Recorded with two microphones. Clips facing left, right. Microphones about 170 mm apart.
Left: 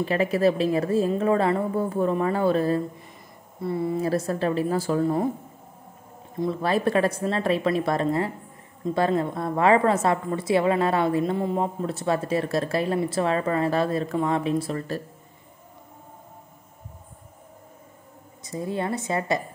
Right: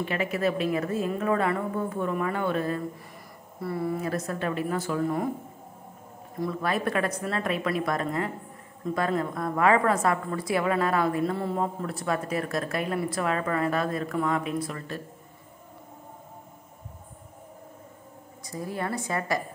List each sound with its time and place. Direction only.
0.0 s a woman's voice: 35° left (ahead or behind)
3.6 s a woman's voice: 20° left (ahead or behind)
6.3 s a woman's voice: 25° left (ahead or behind)
18.4 s a woman's voice: 25° left (ahead or behind)